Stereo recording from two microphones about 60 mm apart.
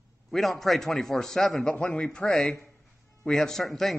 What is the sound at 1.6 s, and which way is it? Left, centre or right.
A man's voice, centre.